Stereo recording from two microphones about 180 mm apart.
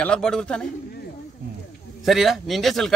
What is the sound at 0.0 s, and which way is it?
Speech, 5° left (ahead or behind).